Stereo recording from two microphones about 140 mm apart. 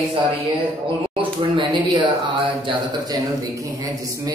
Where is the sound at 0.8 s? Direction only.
40° right (ahead or behind).